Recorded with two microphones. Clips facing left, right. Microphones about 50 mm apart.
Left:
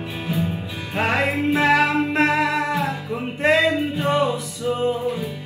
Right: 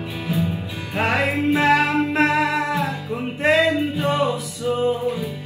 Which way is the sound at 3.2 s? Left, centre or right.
Centre.